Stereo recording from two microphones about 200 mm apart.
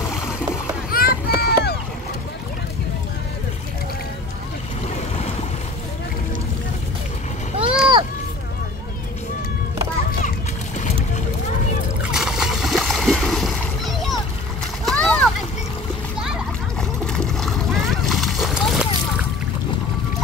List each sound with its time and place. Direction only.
0.9 s run: 50° left (ahead or behind)
7.5 s a sound: 30° right (ahead or behind)
12.0 s splash: 5° right (ahead or behind)
17.0 s splash: 5° left (ahead or behind)